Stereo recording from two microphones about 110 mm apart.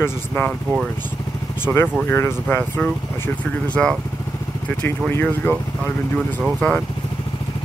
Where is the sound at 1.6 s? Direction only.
20° left (ahead or behind).